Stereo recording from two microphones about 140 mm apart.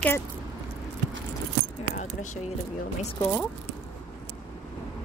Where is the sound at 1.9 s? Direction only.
60° left (ahead or behind).